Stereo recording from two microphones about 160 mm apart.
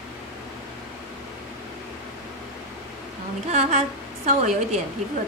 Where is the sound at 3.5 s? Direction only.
45° right (ahead or behind).